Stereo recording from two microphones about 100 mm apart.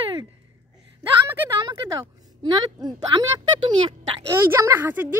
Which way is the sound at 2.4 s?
50° right (ahead or behind).